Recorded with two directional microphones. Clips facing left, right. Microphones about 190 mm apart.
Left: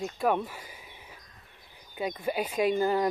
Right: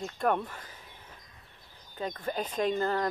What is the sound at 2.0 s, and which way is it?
Speech, 10° left (ahead or behind).